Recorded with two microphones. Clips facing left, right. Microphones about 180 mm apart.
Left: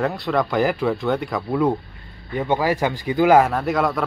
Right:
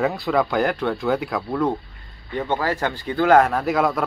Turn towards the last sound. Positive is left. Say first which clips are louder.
# even
turn(degrees=0)  # may be behind; listen again after turning